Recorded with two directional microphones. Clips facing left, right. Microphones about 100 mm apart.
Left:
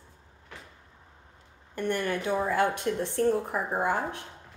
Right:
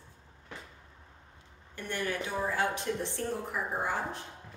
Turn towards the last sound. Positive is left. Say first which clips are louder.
# left 5 dB
turn(degrees=55)  # may be behind; listen again after turning